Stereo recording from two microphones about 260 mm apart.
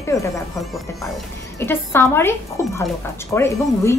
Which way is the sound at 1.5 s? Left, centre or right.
Centre.